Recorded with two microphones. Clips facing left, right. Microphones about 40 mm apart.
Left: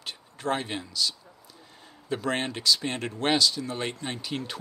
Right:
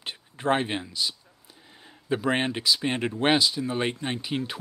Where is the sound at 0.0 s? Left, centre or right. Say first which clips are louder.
Right 3 dB; right.